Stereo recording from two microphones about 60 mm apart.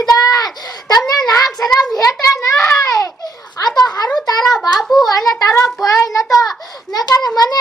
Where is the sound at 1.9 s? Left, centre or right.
Left.